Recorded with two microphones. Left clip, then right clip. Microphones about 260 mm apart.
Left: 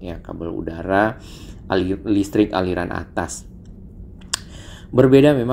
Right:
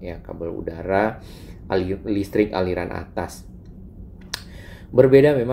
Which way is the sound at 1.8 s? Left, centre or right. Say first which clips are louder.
Left 4 dB; left.